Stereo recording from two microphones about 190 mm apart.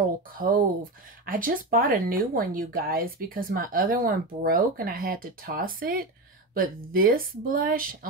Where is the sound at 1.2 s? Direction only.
50° right (ahead or behind).